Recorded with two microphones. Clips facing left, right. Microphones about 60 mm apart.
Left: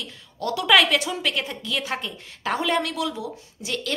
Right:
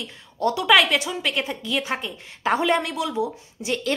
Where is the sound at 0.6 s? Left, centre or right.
Centre.